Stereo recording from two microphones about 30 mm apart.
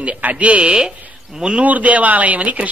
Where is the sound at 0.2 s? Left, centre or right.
Right.